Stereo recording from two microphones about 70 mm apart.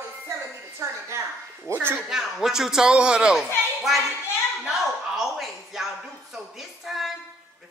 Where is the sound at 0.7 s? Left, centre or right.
Right.